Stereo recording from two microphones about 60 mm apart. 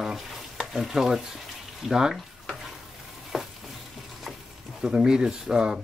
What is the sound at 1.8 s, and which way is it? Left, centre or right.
Speech, centre.